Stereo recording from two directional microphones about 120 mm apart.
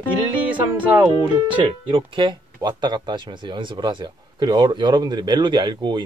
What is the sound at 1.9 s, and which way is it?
Speech, 45° right (ahead or behind).